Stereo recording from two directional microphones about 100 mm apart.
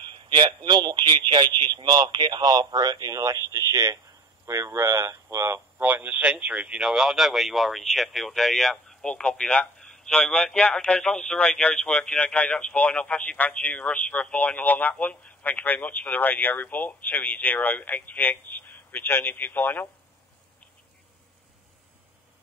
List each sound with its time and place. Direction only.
0.0 s a man's voice: 50° right (ahead or behind); by 19.9 s 20° left (ahead or behind)